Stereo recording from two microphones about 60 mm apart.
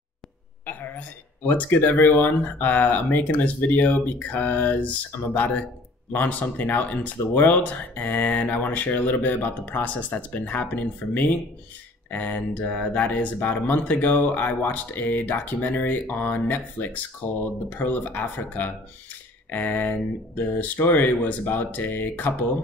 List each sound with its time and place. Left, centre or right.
0.7 s speech: left